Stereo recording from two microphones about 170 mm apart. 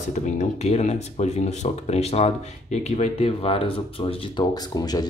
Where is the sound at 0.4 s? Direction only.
40° left (ahead or behind).